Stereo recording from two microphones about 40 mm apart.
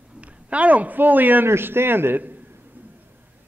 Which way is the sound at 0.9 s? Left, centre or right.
Right.